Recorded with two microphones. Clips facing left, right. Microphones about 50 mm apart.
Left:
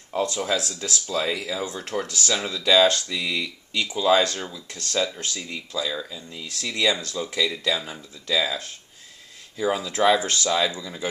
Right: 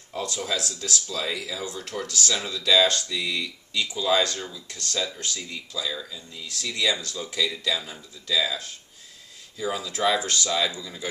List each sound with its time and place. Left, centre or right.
0.1 s speech: left
5.2 s speech: left